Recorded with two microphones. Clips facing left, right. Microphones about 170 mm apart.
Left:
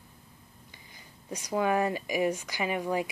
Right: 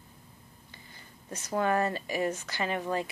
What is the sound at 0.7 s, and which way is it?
Speech, 15° left (ahead or behind).